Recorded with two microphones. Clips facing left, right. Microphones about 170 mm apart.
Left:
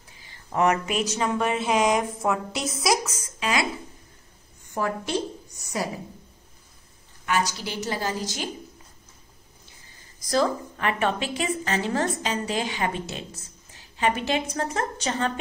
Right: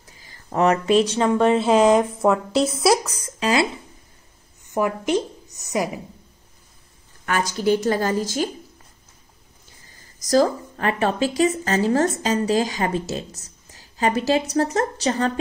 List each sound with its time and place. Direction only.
0.0 s a woman's voice: 40° right (ahead or behind)
4.7 s speech: 15° right (ahead or behind)
7.2 s a woman's voice: 50° right (ahead or behind)
10.1 s a woman's voice: 40° right (ahead or behind)